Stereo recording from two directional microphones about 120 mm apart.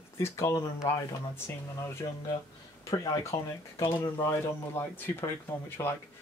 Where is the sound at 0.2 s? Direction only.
25° left (ahead or behind).